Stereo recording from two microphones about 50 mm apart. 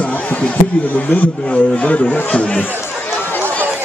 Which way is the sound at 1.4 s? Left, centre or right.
Left.